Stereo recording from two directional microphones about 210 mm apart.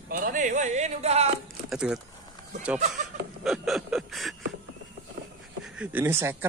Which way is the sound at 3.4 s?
Centre (ahead or behind).